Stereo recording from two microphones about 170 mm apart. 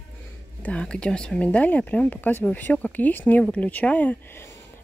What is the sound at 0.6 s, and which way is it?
Speech, 5° left (ahead or behind).